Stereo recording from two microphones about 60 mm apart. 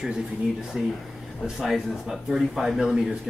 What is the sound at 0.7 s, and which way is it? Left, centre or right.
Speech, centre.